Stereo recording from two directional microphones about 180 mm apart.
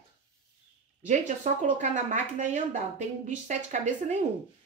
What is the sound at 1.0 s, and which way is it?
Speech, 40° right (ahead or behind).